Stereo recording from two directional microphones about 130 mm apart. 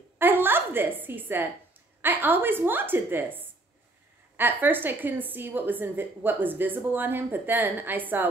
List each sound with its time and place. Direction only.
0.2 s a woman's voice: 15° right (ahead or behind)